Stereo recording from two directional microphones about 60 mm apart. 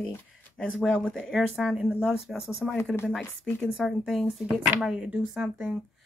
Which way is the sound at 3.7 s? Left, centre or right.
Centre.